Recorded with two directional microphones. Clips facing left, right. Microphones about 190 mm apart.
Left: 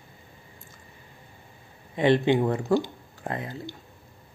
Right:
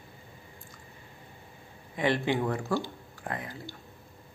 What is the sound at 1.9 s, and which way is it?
Speech, 25° left (ahead or behind).